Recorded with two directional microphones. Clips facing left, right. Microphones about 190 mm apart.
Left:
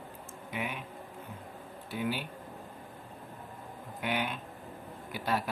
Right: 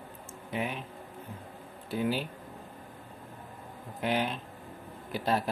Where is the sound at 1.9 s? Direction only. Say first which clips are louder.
Right 4 dB; 35° right (ahead or behind).